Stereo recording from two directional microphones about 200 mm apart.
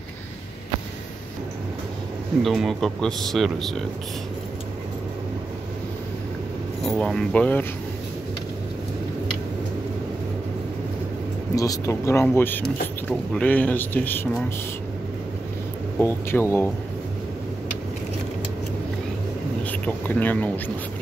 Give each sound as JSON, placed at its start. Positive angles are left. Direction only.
{"t": 2.4, "sound": "speech", "side_deg": 0}
{"t": 6.9, "sound": "speech", "side_deg": 0}
{"t": 11.5, "sound": "speech", "side_deg": 15}
{"t": 16.0, "sound": "speech", "side_deg": 10}
{"t": 19.6, "sound": "speech", "side_deg": 10}